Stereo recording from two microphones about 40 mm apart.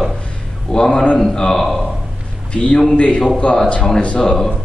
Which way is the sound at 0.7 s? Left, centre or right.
Left.